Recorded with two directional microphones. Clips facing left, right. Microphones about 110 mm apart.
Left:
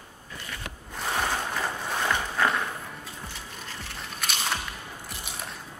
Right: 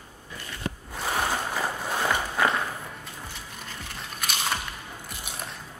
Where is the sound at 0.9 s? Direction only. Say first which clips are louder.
Even; 5° right (ahead or behind).